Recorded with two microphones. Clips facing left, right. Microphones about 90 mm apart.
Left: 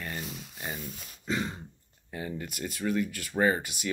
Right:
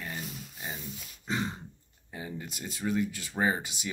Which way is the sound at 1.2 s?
30° right (ahead or behind).